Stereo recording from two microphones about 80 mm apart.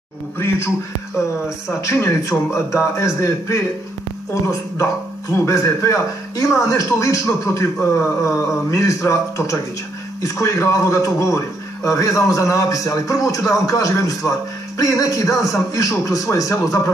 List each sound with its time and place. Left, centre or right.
1.8 s a man's voice: left